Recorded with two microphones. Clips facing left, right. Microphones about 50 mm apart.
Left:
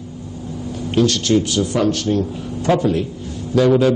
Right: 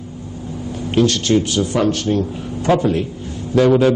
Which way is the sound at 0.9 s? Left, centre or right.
Right.